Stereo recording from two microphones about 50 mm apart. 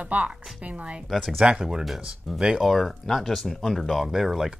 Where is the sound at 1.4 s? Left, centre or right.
Centre.